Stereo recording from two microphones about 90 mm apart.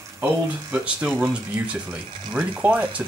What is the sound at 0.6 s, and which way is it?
Speech, 20° right (ahead or behind).